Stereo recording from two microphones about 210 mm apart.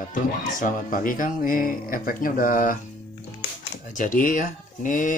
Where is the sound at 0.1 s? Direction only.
40° left (ahead or behind).